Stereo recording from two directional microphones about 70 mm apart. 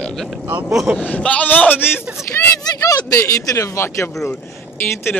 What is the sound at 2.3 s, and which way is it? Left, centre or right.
Speech, left.